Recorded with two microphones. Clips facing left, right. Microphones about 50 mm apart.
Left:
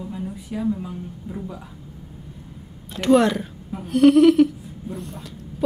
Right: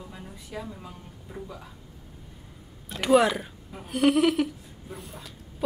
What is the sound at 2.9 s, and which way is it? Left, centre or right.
A woman's voice, centre.